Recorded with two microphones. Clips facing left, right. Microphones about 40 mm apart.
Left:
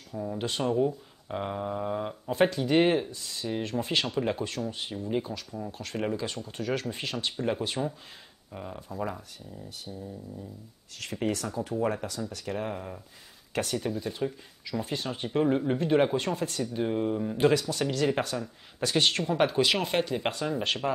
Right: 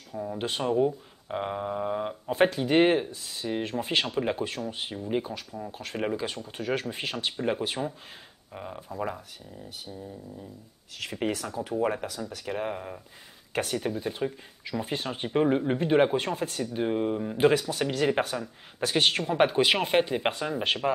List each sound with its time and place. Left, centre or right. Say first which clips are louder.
0.1 s speech: right 1 dB; centre